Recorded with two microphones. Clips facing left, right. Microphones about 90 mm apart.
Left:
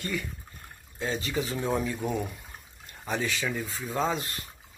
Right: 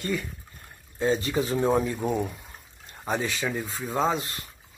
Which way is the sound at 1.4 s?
30° right (ahead or behind).